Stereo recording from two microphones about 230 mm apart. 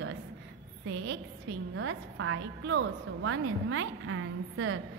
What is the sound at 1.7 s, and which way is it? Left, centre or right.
A woman's voice, right.